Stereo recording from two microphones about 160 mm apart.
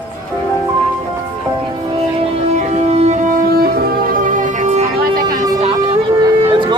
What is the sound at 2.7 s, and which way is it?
Music, 45° right (ahead or behind).